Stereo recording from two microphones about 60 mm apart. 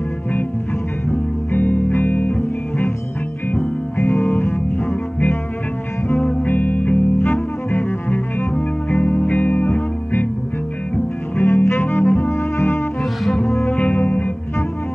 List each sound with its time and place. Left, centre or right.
1.5 s music: left
3.5 s music: left
6.4 s music: left
11.3 s music: left
13.2 s music: centre
13.7 s music: left